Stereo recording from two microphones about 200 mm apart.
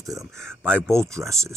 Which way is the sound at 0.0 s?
15° right (ahead or behind).